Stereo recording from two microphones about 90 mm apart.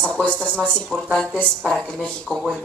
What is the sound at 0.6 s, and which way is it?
Speech, 10° right (ahead or behind).